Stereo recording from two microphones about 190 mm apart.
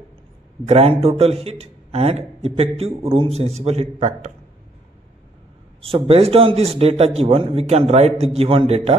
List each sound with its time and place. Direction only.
0.7 s a man's voice: 30° right (ahead or behind)
5.8 s a man's voice: 30° right (ahead or behind)